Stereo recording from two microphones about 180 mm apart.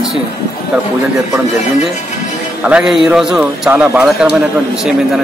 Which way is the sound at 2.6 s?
5° right (ahead or behind).